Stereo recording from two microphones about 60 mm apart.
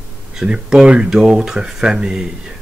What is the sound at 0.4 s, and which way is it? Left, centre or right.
Speech, centre.